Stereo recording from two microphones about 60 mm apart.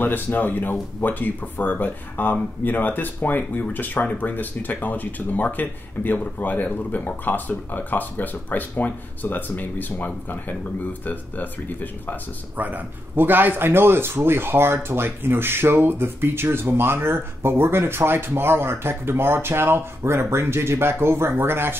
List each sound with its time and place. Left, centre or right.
0.0 s speech: left
12.5 s speech: right